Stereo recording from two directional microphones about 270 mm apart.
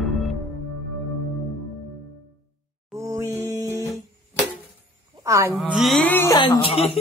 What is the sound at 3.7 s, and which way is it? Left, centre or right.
Guitar, centre.